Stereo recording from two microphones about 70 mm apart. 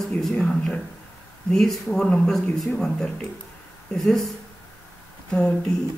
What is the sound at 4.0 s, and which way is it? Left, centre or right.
Speech, centre.